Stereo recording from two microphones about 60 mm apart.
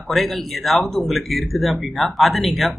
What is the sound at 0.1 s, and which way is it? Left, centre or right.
Speech, centre.